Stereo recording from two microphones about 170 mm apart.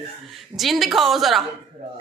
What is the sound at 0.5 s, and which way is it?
Speech, centre (ahead or behind).